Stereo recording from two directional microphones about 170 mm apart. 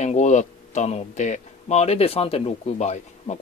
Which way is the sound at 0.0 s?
45° left (ahead or behind).